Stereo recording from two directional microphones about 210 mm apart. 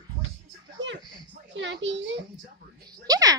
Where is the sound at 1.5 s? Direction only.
60° right (ahead or behind).